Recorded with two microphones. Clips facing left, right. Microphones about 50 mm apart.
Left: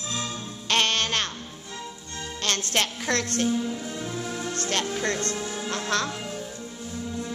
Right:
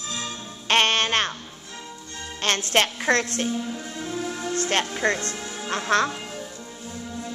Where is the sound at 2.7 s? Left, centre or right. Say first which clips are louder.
Right 7 dB; right.